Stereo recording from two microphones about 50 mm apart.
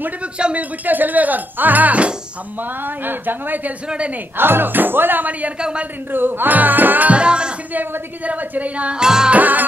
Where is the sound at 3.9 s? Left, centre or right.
Right.